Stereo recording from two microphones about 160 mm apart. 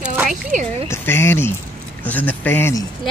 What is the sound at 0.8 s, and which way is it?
Speech, 15° left (ahead or behind).